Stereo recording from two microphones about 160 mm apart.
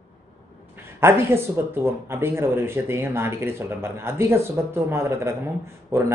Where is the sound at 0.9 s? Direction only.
15° right (ahead or behind).